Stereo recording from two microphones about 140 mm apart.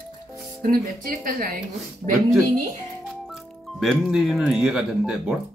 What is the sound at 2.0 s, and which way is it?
Speech, 55° right (ahead or behind).